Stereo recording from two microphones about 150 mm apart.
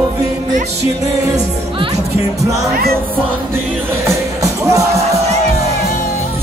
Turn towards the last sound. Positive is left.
turn(degrees=-20)  # may be behind; listen again after turning